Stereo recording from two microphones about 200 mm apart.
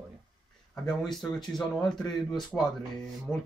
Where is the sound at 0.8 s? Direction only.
Centre (ahead or behind).